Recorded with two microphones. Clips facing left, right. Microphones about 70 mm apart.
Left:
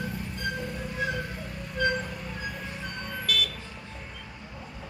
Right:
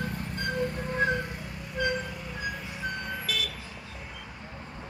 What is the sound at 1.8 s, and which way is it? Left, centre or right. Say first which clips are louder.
Music: left 2 dB; centre.